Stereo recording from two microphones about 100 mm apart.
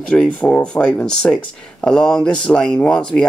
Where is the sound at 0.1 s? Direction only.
10° left (ahead or behind).